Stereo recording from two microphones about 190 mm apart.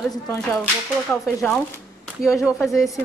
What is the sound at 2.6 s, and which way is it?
Speech, centre (ahead or behind).